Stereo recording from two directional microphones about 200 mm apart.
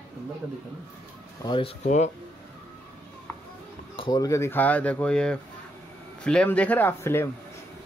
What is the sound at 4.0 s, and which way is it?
Speech, 20° left (ahead or behind).